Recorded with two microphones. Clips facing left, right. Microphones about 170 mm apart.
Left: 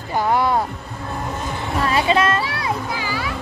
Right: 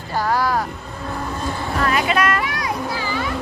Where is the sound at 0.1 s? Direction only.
20° left (ahead or behind).